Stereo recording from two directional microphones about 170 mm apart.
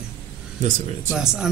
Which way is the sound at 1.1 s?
5° right (ahead or behind).